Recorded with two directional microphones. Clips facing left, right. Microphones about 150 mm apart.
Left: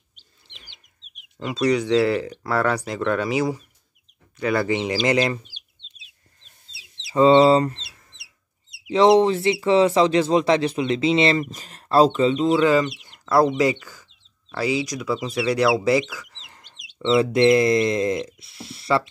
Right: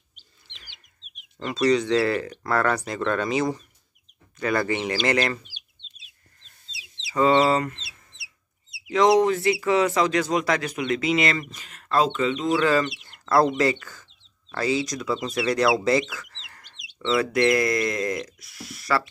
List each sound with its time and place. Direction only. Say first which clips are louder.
1.7 s speech: left 2 dB; 10° left (ahead or behind)
7.2 s speech: left 5 dB; 25° left (ahead or behind)
8.9 s speech: left 3 dB; 30° left (ahead or behind)
12.6 s speech: left 2 dB; 15° left (ahead or behind)
13.0 s chicken: left 2 dB; 10° left (ahead or behind)
13.6 s speech: left 2 dB; 15° left (ahead or behind)